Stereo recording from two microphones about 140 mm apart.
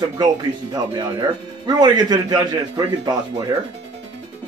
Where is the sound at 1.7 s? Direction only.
30° right (ahead or behind).